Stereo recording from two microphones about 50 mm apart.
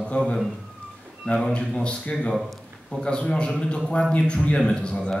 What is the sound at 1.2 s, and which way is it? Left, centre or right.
A man's voice, centre.